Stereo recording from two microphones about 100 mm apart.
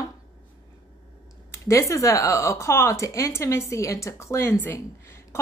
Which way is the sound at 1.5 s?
30° left (ahead or behind).